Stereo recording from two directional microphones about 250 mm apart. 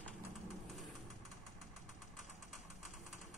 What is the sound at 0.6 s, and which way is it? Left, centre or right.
Vehicle, centre.